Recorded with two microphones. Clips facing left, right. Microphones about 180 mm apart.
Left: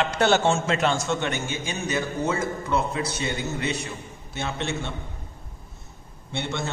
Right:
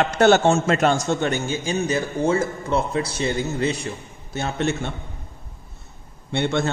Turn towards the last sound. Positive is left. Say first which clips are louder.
# right 8 dB
turn(degrees=-60)  # may be behind; listen again after turning